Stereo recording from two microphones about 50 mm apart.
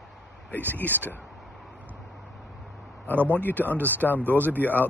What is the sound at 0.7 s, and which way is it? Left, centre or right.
Speech, left.